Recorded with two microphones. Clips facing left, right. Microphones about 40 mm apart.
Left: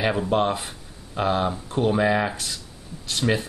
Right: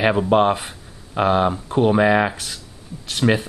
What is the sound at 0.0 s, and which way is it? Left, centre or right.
Speech, right.